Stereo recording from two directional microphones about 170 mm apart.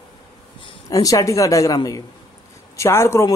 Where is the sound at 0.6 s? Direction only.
20° left (ahead or behind).